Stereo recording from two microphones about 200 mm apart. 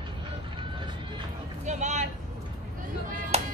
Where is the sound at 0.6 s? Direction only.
25° right (ahead or behind).